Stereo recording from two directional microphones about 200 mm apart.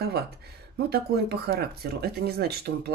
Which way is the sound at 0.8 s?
55° right (ahead or behind).